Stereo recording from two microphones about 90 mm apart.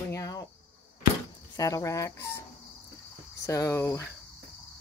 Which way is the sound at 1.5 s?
40° left (ahead or behind).